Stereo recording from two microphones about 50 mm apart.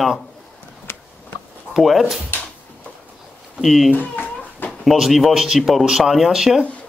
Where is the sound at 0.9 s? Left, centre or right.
Left.